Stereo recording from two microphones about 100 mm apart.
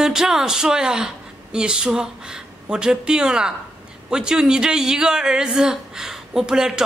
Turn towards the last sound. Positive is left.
turn(degrees=-5)  # may be behind; listen again after turning